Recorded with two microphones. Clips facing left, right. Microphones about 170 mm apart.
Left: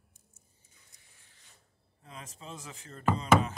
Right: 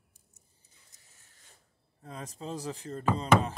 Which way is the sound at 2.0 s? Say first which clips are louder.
Right 7 dB; 35° right (ahead or behind).